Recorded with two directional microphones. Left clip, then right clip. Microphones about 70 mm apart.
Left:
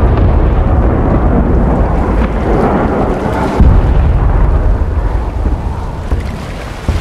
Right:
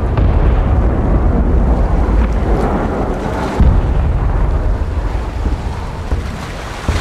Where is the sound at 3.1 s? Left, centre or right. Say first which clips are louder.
Left 5 dB; right.